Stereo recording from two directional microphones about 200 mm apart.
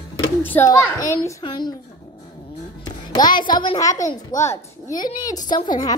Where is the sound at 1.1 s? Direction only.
20° left (ahead or behind).